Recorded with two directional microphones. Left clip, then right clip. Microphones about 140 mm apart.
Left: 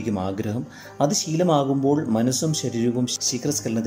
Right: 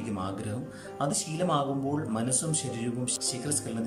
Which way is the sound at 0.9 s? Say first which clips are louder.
Left 9 dB; 45° left (ahead or behind).